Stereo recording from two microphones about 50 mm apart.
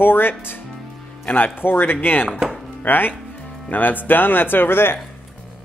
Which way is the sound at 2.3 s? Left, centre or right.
Centre.